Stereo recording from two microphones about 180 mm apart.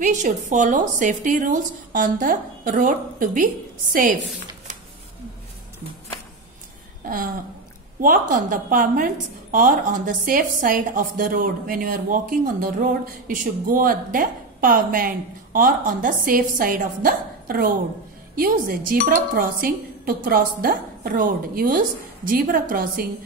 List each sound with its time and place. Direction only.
0.0 s a woman's voice: 45° right (ahead or behind)
8.0 s a woman's voice: 50° right (ahead or behind)